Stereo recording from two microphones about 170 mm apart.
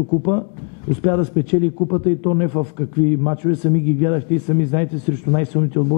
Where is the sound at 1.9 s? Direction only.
15° left (ahead or behind).